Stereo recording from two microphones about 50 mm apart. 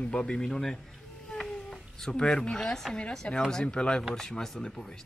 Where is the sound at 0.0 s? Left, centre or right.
Centre.